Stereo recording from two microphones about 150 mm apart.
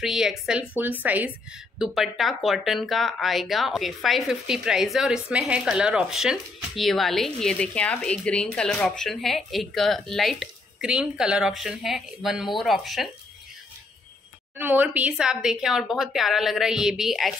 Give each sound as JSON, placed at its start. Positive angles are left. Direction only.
{"t": 0.0, "sound": "a woman's voice", "side_deg": 0}
{"t": 14.6, "sound": "speech", "side_deg": -10}